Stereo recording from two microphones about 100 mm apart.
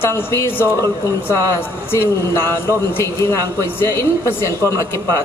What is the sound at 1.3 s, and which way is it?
A man's voice, 25° left (ahead or behind).